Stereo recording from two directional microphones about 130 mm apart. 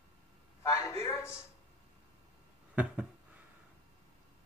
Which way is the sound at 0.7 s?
20° left (ahead or behind).